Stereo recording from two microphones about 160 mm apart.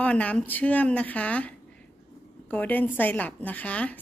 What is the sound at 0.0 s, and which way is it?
A woman's voice, 10° left (ahead or behind).